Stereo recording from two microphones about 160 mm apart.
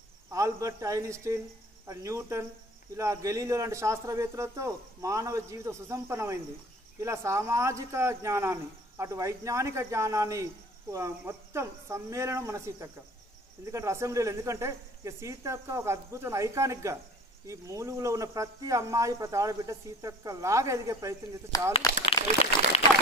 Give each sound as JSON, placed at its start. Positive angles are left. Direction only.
{"t": 0.3, "sound": "speech", "side_deg": -20}
{"t": 21.5, "sound": "speech", "side_deg": 20}